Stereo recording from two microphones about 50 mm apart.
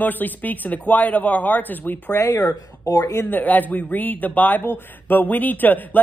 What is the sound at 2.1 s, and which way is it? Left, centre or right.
Speech, left.